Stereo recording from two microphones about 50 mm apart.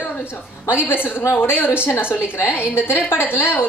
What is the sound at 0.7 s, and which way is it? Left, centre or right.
A woman's voice, left.